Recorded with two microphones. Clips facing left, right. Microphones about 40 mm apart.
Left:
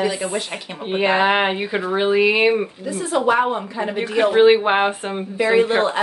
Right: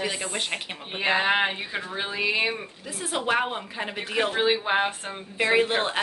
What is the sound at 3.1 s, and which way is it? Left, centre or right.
Speech, centre.